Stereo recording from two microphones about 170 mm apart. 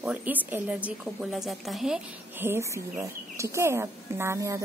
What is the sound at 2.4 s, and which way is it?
Speech, 15° right (ahead or behind).